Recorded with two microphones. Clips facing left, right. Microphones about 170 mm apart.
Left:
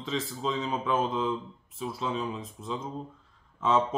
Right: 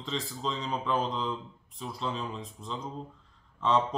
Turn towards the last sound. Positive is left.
turn(degrees=5)  # may be behind; listen again after turning